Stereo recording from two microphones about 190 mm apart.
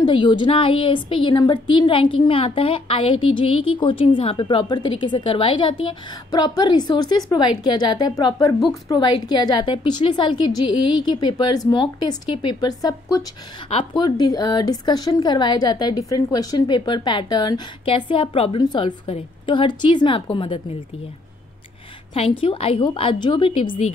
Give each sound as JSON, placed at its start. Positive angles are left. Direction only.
{"t": 0.0, "sound": "speech", "side_deg": 25}
{"t": 22.1, "sound": "speech", "side_deg": 30}